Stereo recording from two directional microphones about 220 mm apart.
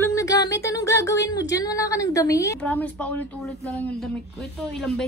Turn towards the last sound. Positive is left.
turn(degrees=5)  # may be behind; listen again after turning